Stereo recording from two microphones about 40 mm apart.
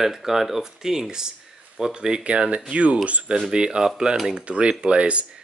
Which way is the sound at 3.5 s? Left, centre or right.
Centre.